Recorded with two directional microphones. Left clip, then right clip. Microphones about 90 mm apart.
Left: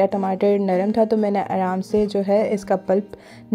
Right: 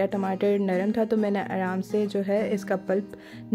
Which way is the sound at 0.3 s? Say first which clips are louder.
Left 6 dB; 30° left (ahead or behind).